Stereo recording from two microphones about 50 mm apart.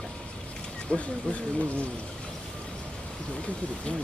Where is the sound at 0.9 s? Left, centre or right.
Left.